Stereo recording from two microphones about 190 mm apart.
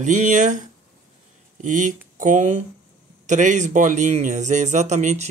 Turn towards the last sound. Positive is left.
turn(degrees=-40)  # may be behind; listen again after turning